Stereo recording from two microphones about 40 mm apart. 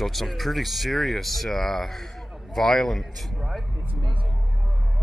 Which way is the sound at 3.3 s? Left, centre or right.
Centre.